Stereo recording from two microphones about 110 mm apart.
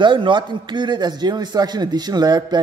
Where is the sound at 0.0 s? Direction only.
45° right (ahead or behind).